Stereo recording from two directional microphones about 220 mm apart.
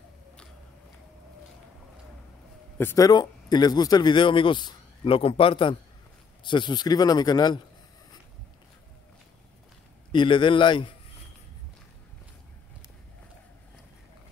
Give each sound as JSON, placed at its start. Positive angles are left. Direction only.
{"t": 2.8, "sound": "a man's voice", "side_deg": 15}
{"t": 10.1, "sound": "speech", "side_deg": 20}